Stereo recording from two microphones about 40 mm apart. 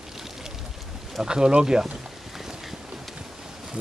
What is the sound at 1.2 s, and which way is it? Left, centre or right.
Speech, right.